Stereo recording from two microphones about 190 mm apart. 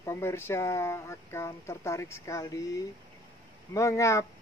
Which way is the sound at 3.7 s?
15° left (ahead or behind).